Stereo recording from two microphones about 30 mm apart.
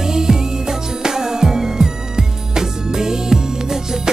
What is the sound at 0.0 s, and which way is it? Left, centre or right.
Music, centre.